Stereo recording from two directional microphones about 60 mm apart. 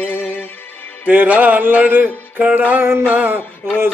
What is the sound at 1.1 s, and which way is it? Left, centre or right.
Speech, right.